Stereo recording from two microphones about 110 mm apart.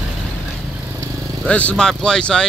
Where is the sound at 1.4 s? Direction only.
10° left (ahead or behind).